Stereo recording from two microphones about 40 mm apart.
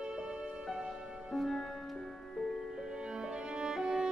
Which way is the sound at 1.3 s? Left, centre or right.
Centre.